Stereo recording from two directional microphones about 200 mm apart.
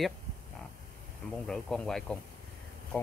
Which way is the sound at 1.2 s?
Centre (ahead or behind).